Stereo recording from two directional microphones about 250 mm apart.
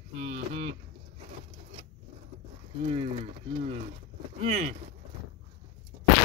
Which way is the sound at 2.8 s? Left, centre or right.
Right.